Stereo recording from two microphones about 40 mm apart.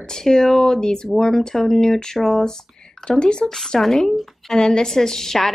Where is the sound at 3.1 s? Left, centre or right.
Left.